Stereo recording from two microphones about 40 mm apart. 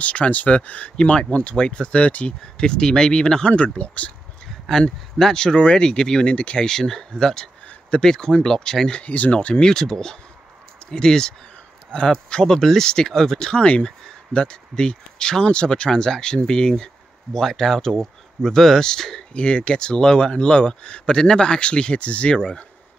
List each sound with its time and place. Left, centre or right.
0.0 s speech: left
2.5 s speech: centre
3.5 s speech: left
4.6 s speech: centre
6.3 s speech: left
6.6 s speech: centre
9.0 s speech: left
9.3 s speech: left
9.7 s speech: centre
19.3 s speech: left